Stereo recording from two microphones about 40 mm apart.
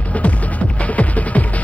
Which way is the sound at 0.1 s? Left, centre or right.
Left.